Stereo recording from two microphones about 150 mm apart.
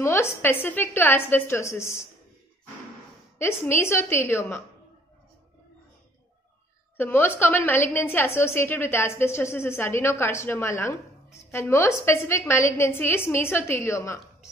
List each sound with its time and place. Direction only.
0.0 s a woman's voice: 15° left (ahead or behind)
3.3 s a woman's voice: 15° left (ahead or behind)
7.0 s a woman's voice: 15° left (ahead or behind)